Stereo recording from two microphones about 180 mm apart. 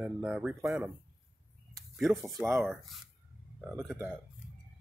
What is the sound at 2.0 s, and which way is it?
Speech, centre (ahead or behind).